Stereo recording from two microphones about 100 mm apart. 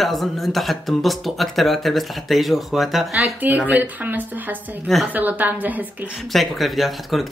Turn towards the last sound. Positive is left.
turn(degrees=0)  # may be behind; listen again after turning